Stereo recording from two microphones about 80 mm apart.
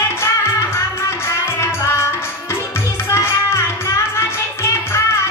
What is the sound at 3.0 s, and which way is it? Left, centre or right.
Music, left.